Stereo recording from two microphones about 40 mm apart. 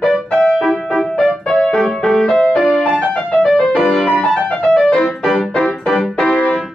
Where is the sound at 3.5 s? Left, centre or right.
Centre.